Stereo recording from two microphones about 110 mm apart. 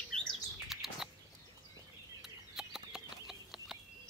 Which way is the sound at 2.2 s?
5° right (ahead or behind).